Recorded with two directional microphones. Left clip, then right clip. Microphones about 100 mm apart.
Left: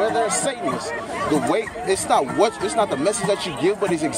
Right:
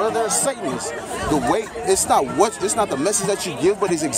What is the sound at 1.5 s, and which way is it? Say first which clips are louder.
A man's voice: right 2 dB; 60° right (ahead or behind).